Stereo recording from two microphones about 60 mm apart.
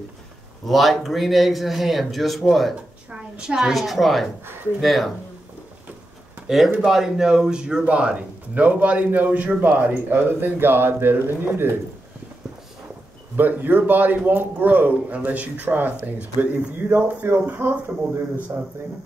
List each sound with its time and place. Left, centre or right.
0.7 s speech: centre
3.1 s a sound: centre
3.5 s speech: centre
6.4 s a man's voice: centre; by 11.7 s right
13.4 s a man's voice: right